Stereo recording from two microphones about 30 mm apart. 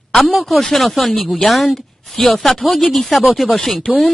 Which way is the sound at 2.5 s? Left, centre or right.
Centre.